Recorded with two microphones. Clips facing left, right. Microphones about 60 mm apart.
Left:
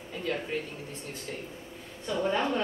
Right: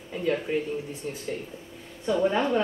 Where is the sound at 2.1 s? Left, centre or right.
Centre.